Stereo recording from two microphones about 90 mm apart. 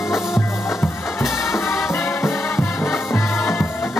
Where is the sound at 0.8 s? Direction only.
30° left (ahead or behind).